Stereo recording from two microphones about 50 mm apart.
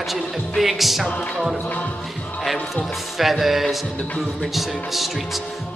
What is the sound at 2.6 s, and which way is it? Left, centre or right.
A man's voice, centre.